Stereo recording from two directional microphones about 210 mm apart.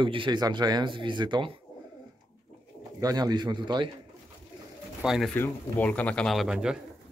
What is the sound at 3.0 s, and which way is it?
Speech, 20° right (ahead or behind).